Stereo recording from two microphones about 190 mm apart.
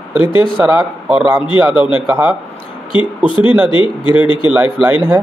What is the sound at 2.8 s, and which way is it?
Speech, 25° left (ahead or behind).